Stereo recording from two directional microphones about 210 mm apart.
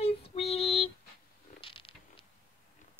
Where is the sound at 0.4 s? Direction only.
30° left (ahead or behind).